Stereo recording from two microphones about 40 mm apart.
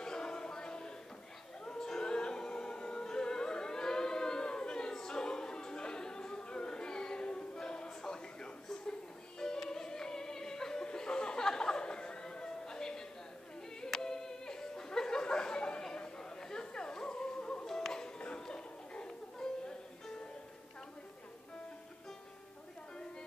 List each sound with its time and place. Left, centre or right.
0.0 s music: centre
13.8 s a sound: centre
15.9 s chatter: centre
17.4 s music: left
17.6 s music: centre
18.2 s a sound: left
19.4 s music: centre